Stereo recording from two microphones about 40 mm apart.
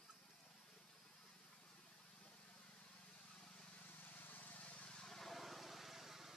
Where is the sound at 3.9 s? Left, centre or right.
Left.